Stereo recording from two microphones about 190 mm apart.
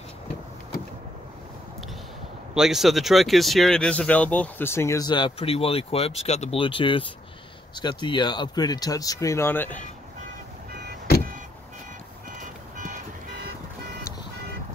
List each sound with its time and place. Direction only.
2.5 s speech: centre (ahead or behind)
12.4 s vehicle: 40° right (ahead or behind)